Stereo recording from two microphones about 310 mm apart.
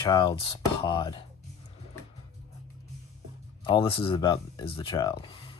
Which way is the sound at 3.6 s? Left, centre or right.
Centre.